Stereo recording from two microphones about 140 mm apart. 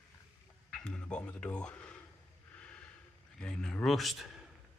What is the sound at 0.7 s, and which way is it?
Speech, 5° left (ahead or behind).